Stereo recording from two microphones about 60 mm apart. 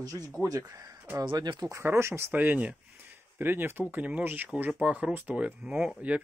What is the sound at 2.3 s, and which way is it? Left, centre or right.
Speech, right.